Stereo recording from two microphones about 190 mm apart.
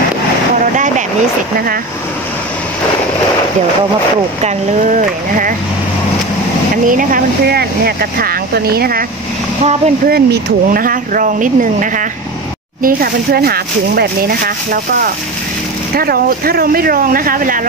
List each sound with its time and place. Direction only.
4.9 s speech: 45° right (ahead or behind)
6.9 s speech: 45° right (ahead or behind)
9.6 s speech: 35° right (ahead or behind)
10.0 s speech: 55° right (ahead or behind)